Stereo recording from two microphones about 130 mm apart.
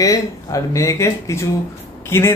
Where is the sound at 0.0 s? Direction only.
25° left (ahead or behind).